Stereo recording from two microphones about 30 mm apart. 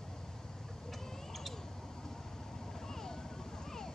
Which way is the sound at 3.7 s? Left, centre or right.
Centre.